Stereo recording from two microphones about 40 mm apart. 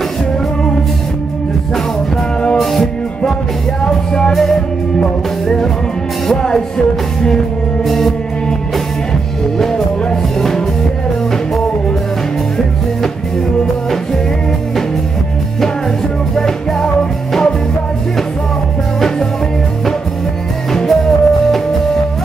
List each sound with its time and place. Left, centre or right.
2.5 s music: centre
3.8 s music: centre
6.3 s music: centre
7.8 s music: centre
9.6 s music: centre
16.3 s music: centre
18.9 s music: centre
20.7 s music: centre